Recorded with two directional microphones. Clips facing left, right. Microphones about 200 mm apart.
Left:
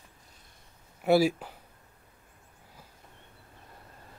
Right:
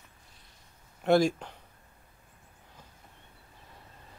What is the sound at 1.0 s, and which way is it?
Speech, 5° left (ahead or behind).